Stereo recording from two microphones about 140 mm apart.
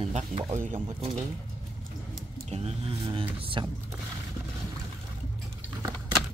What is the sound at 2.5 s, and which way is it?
Speech, 45° right (ahead or behind).